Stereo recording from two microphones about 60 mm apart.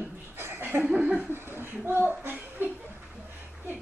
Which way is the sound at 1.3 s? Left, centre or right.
Right.